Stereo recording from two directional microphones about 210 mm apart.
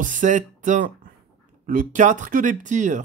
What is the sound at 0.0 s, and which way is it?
Speech, 35° right (ahead or behind).